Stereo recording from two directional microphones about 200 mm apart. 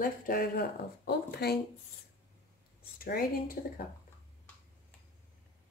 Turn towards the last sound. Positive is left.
turn(degrees=45)  # may be behind; listen again after turning